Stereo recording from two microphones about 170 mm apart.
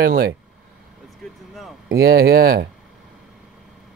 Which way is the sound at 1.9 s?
65° right (ahead or behind).